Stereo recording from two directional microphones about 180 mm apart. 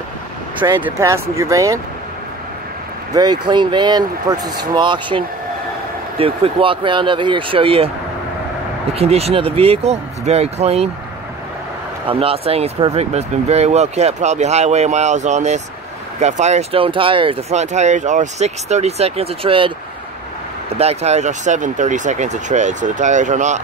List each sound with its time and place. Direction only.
0.8 s speech: 15° right (ahead or behind)
3.2 s speech: 25° right (ahead or behind)
8.9 s speech: 35° right (ahead or behind)
12.1 s speech: 30° right (ahead or behind)
20.7 s speech: 35° right (ahead or behind)